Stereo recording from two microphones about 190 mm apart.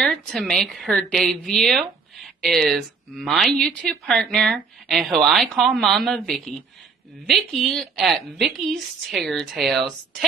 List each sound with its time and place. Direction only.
0.0 s a woman's voice: 5° left (ahead or behind)